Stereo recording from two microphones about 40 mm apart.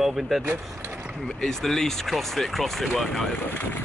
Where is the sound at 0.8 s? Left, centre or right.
Right.